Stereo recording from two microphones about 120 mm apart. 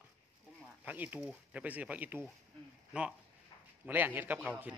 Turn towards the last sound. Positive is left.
turn(degrees=-15)  # may be behind; listen again after turning